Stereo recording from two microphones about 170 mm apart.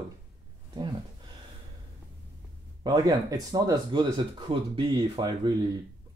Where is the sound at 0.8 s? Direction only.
25° right (ahead or behind).